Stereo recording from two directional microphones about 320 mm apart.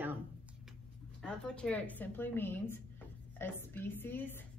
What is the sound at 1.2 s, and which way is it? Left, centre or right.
A woman's voice, centre.